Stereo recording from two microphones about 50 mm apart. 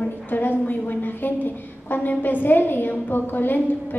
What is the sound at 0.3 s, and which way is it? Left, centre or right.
A woman's voice, left.